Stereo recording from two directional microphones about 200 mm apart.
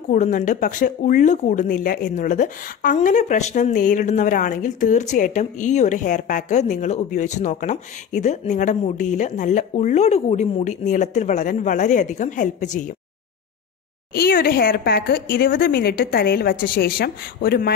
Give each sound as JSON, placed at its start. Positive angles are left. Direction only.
{"t": 0.1, "sound": "speech", "side_deg": 40}
{"t": 14.1, "sound": "speech", "side_deg": 50}